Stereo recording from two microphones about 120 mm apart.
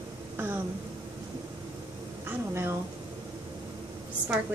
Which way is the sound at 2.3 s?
20° right (ahead or behind).